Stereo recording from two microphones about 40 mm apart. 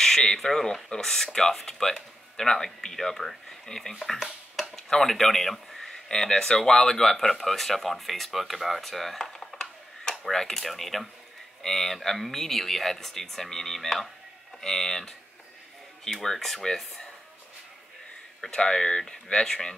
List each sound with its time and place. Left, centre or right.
0.4 s speech: centre
4.1 s a sound: centre
4.7 s speech: centre
5.9 s speech: centre
18.5 s speech: centre